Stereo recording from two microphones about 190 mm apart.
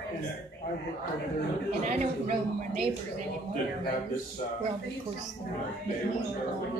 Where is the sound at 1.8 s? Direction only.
40° right (ahead or behind).